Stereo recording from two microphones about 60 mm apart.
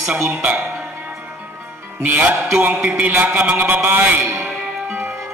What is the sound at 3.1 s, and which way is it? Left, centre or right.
A man's voice, right.